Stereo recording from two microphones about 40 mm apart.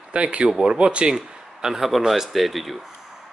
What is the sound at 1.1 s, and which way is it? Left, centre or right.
Speech, centre.